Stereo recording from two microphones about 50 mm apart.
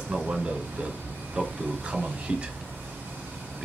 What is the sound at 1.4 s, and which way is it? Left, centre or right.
Speech, right.